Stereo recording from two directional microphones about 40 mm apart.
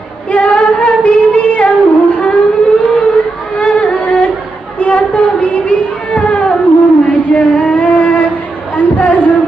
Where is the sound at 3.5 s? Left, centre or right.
Left.